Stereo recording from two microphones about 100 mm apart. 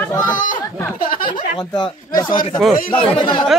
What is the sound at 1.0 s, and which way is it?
Speech, 55° left (ahead or behind).